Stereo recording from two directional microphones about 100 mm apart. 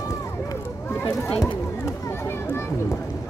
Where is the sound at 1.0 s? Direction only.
25° left (ahead or behind).